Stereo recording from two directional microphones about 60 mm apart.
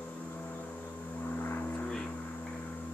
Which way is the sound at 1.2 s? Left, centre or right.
Left.